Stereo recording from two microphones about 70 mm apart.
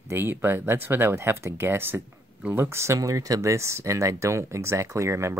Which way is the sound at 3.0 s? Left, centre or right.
Right.